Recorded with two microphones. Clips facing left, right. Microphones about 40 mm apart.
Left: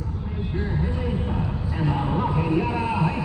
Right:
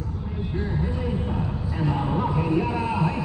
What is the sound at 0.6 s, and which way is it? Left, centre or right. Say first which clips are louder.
Music: even; left.